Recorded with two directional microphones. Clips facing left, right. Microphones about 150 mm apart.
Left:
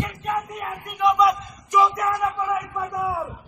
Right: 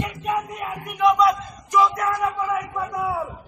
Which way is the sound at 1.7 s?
15° left (ahead or behind).